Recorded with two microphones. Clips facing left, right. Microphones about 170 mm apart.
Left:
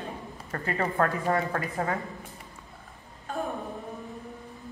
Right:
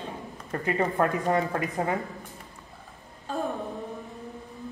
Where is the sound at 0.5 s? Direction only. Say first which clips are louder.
Right 2 dB; 20° right (ahead or behind).